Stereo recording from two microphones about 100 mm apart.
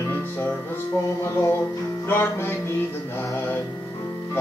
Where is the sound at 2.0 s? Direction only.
25° left (ahead or behind).